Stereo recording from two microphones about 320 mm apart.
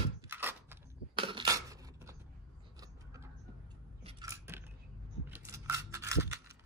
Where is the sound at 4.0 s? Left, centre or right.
Centre.